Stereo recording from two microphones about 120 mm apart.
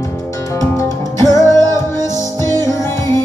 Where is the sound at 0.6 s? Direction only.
25° left (ahead or behind).